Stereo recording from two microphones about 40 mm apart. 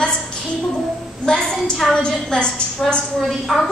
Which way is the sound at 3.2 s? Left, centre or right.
Centre.